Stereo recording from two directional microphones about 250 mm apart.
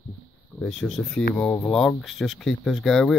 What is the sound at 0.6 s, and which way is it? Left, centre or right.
Speech, centre.